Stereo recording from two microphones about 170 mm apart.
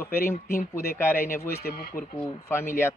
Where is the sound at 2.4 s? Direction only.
15° left (ahead or behind).